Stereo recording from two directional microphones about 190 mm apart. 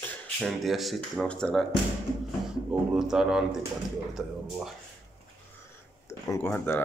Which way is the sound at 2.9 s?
Centre (ahead or behind).